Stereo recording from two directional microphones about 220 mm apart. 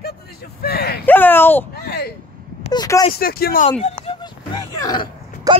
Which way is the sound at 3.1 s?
45° left (ahead or behind).